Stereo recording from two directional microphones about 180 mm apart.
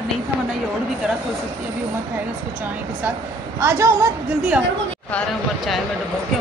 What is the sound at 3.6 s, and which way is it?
Speech, 15° right (ahead or behind).